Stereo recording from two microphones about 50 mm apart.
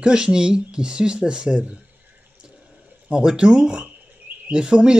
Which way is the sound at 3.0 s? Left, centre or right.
Centre.